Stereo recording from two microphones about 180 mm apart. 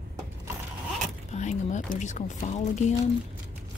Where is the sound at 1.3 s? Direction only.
40° left (ahead or behind).